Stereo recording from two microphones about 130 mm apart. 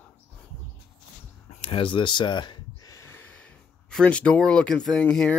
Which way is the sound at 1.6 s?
45° left (ahead or behind).